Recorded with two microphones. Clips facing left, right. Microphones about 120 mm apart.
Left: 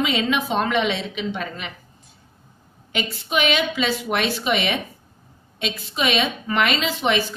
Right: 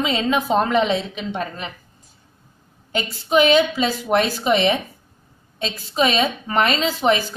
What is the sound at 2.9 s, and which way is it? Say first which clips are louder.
A woman's voice: right 6 dB; 35° right (ahead or behind).